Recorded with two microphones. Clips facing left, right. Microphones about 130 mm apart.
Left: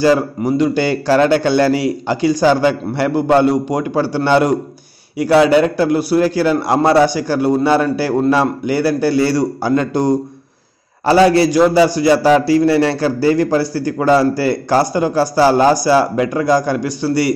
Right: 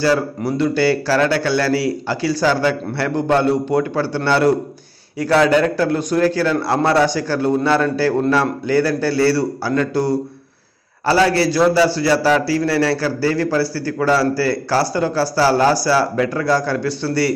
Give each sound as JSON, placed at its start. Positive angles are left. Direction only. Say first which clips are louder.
{"t": 0.0, "sound": "a man's voice", "louder": "left 4 dB", "side_deg": 15}